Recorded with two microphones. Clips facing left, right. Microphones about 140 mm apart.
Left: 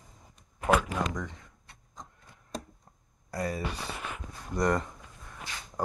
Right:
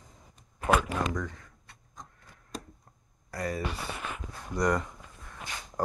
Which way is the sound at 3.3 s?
25° left (ahead or behind).